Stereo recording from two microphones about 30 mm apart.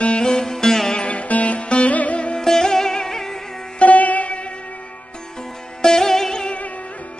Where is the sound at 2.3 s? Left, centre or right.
Centre.